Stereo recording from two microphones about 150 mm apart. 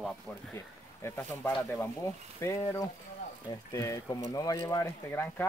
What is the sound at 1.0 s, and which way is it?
Speech, 15° left (ahead or behind).